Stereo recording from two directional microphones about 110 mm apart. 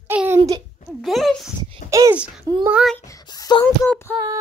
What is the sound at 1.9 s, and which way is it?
Speech, 30° right (ahead or behind).